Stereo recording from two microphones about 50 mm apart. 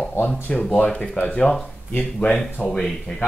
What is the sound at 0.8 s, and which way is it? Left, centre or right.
Speech, left.